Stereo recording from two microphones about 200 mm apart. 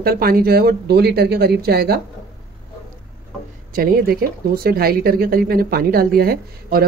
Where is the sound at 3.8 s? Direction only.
50° right (ahead or behind).